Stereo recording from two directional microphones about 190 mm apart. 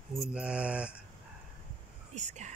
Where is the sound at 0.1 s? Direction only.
5° right (ahead or behind).